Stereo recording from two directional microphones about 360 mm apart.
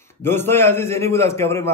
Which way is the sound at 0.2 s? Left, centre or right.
Centre.